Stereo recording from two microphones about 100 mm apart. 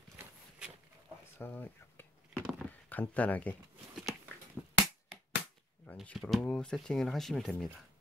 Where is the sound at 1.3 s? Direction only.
20° left (ahead or behind).